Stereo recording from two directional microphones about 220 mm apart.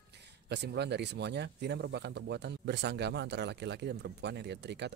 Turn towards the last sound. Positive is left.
turn(degrees=-50)  # may be behind; listen again after turning